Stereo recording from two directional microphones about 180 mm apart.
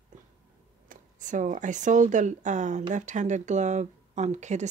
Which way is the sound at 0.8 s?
45° right (ahead or behind).